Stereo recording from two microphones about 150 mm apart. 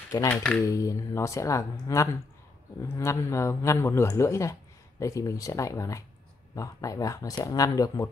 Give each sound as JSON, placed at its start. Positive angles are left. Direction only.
{"t": 0.3, "sound": "speech", "side_deg": 5}
{"t": 0.7, "sound": "speech", "side_deg": 20}